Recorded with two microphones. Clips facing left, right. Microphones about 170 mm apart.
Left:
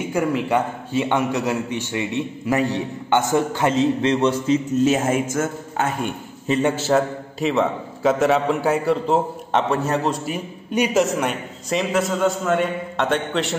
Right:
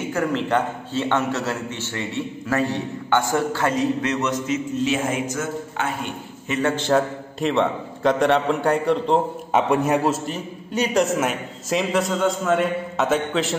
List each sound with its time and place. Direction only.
0.1 s a man's voice: 10° left (ahead or behind); by 4.6 s 30° left (ahead or behind)
4.8 s a man's voice: 45° left (ahead or behind)
6.7 s a man's voice: 5° left (ahead or behind)
9.6 s a man's voice: 10° right (ahead or behind)
10.2 s a man's voice: 10° left (ahead or behind)